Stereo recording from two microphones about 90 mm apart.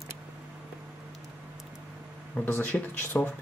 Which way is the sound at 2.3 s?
20° left (ahead or behind).